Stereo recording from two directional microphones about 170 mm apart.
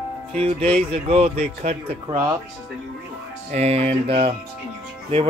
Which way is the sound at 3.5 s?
35° right (ahead or behind).